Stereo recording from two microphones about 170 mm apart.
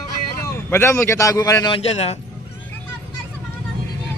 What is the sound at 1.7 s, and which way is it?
Speech, 40° left (ahead or behind).